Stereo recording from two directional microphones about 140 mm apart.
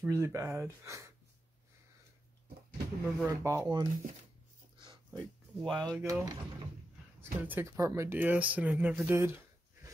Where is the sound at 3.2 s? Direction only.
25° right (ahead or behind).